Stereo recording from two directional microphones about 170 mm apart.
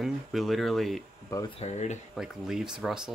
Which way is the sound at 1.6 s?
40° left (ahead or behind).